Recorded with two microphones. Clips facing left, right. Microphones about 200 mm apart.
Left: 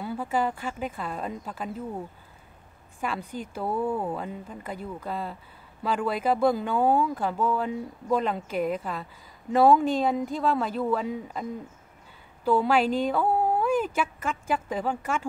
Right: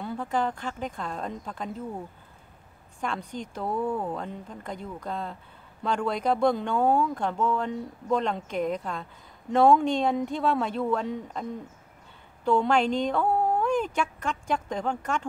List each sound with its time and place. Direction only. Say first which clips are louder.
0.0 s a woman's voice: left 1 dB; 5° left (ahead or behind)
12.4 s a woman's voice: even; 5° left (ahead or behind)